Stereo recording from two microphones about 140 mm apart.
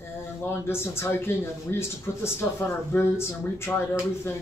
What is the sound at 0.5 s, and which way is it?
Speech, 15° left (ahead or behind).